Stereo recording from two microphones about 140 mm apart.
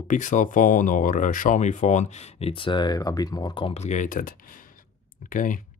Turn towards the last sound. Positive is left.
turn(degrees=70)  # may be behind; listen again after turning